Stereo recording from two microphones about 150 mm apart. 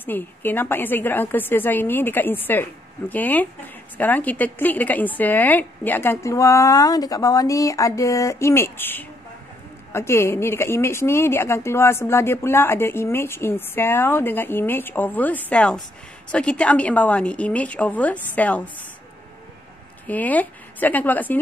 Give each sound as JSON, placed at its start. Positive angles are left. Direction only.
{"t": 0.0, "sound": "a woman's voice", "side_deg": 15}
{"t": 20.1, "sound": "a woman's voice", "side_deg": 10}